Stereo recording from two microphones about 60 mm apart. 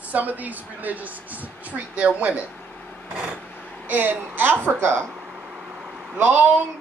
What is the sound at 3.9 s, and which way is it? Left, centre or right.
A woman's voice, right.